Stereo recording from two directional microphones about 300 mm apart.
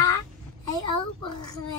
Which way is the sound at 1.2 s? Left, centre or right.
Centre.